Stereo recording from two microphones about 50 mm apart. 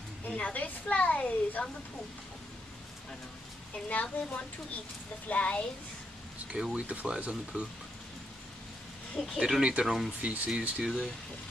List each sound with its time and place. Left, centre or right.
0.3 s a woman's voice: left
3.9 s a woman's voice: left
6.5 s speech: right
9.2 s speech: centre
9.6 s speech: right
9.8 s speech: centre
10.2 s speech: right